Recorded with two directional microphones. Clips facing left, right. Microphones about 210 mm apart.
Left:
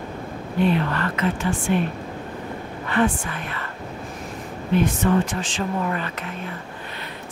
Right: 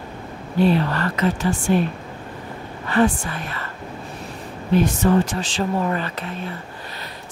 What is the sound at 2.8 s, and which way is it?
Speech, 40° right (ahead or behind).